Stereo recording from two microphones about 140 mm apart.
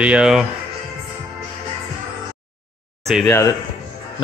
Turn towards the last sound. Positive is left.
turn(degrees=20)  # may be behind; listen again after turning